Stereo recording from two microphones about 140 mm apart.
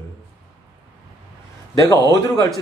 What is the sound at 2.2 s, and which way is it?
Speech, 25° left (ahead or behind).